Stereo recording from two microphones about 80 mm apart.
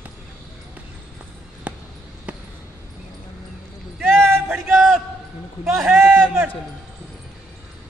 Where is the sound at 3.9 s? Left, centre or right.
Right.